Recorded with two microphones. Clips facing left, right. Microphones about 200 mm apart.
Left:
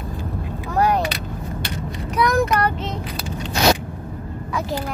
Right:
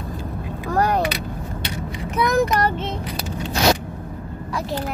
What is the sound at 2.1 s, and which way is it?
Child singing, 20° right (ahead or behind).